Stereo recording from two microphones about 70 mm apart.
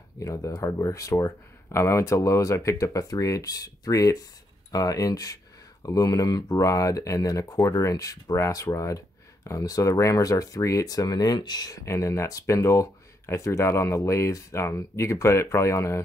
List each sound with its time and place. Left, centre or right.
0.2 s speech: left
11.8 s speech: left